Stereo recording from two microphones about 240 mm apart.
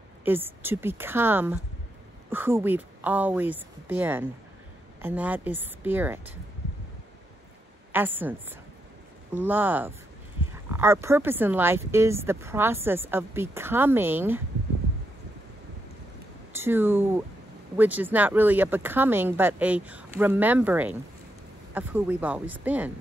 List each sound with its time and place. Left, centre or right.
0.2 s speech: centre
7.9 s speech: centre
16.5 s speech: centre